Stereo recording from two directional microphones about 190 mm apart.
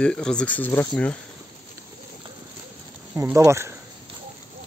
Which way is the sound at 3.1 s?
15° right (ahead or behind).